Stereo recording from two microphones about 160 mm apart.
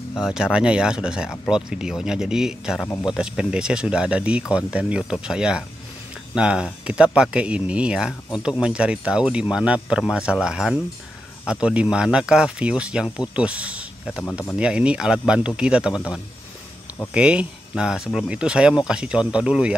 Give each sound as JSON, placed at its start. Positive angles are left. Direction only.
{"t": 0.1, "sound": "speech", "side_deg": -5}
{"t": 2.9, "sound": "speech", "side_deg": 20}
{"t": 3.2, "sound": "speech", "side_deg": -5}